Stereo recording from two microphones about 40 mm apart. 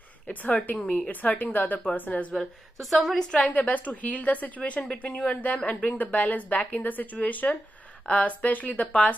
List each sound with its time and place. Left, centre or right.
0.3 s a woman's voice: left
2.8 s a woman's voice: centre
3.2 s a woman's voice: centre
3.4 s a woman's voice: left